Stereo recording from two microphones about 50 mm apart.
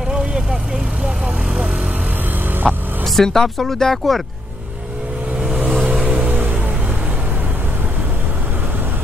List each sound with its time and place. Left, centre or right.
0.1 s vehicle: centre
2.6 s speech: centre
5.9 s vehicle: right